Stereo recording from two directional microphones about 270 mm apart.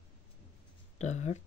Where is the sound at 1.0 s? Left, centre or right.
Left.